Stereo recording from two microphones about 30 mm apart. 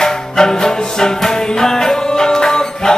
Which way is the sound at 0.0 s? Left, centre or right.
Centre.